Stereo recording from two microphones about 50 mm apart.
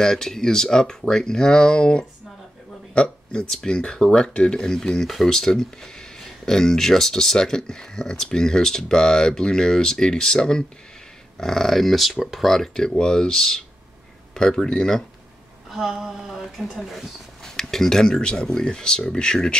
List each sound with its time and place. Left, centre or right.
0.0 s speech: centre
15.7 s speech: centre
17.4 s speech: centre